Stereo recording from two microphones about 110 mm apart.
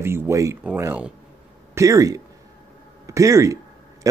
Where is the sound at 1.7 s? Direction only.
30° right (ahead or behind).